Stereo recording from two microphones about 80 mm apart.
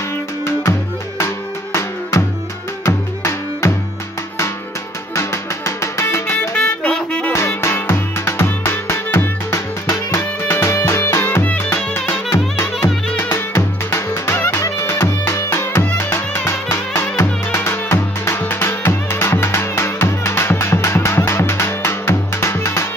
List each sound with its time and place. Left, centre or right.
0.5 s music: left
5.1 s music: left; by 7.3 s centre
7.3 s music: left